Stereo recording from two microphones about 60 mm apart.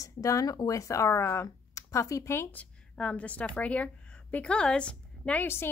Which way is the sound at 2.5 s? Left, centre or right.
Left.